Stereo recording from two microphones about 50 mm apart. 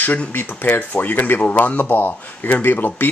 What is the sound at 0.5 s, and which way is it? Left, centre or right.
Speech, left.